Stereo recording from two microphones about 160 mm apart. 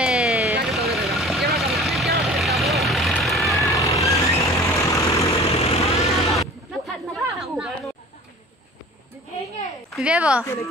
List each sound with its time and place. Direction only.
0.0 s vehicle: 5° right (ahead or behind)
3.6 s vehicle: 20° left (ahead or behind)
5.3 s vehicle: 40° left (ahead or behind)
6.3 s artillery fire: centre (ahead or behind)
9.9 s a sound: 5° right (ahead or behind)
10.4 s a woman's voice: 15° left (ahead or behind)